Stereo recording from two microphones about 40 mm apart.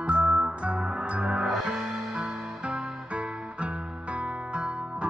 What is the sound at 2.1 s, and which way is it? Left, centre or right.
Music, right.